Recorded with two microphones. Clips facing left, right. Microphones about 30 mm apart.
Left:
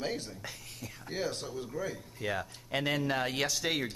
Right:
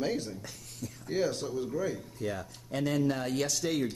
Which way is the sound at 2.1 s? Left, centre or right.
Left.